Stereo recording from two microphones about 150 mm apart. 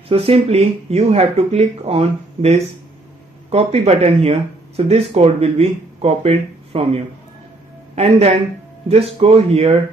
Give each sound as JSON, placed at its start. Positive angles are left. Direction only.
{"t": 0.1, "sound": "speech", "side_deg": -40}